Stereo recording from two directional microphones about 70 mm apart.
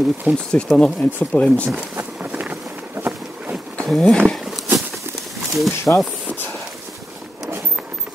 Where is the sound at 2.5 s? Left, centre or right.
Right.